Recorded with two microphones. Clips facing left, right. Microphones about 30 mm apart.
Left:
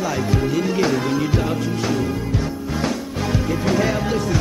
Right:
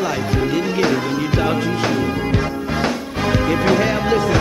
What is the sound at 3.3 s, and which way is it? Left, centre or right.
Music, right.